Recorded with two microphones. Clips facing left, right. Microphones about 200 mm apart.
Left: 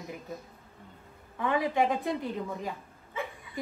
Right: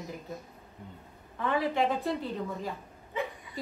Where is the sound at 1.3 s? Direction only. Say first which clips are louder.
Left 1 dB; 15° left (ahead or behind).